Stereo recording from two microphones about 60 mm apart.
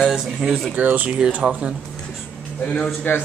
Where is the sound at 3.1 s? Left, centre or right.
Left.